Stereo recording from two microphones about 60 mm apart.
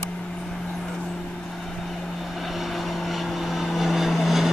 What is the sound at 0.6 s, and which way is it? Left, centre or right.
Vehicle, centre.